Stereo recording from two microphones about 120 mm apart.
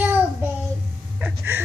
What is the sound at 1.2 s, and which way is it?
Speech, 15° right (ahead or behind).